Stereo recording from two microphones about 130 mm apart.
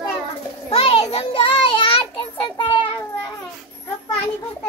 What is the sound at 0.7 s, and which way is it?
Child singing, 45° left (ahead or behind).